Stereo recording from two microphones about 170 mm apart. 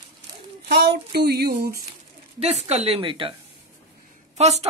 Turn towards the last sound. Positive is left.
turn(degrees=-40)  # may be behind; listen again after turning